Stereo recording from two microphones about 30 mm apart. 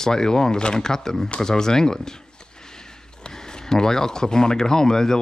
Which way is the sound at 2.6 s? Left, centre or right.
Left.